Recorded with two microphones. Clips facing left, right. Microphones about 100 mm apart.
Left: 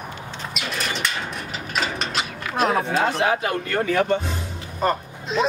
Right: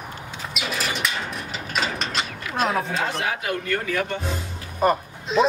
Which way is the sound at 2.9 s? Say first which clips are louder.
Left 5 dB; 35° left (ahead or behind).